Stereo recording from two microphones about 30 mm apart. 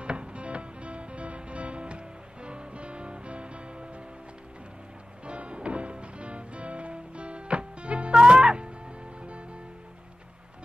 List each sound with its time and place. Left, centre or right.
0.0 s music: right
5.2 s music: right
8.1 s music: right
9.2 s music: right